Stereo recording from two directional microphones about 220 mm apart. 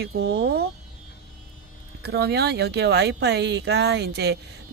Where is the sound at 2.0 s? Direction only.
50° right (ahead or behind).